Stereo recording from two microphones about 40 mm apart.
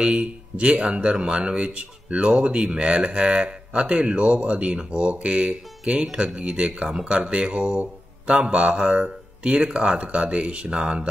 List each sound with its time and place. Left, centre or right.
0.0 s speech: right